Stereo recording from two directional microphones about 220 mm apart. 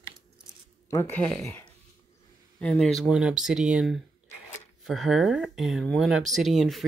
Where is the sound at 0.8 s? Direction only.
10° left (ahead or behind).